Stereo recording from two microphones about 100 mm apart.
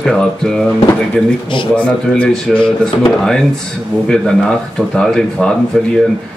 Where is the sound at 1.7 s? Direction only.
10° left (ahead or behind).